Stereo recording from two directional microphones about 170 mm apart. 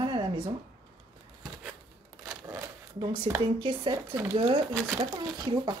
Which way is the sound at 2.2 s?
25° right (ahead or behind).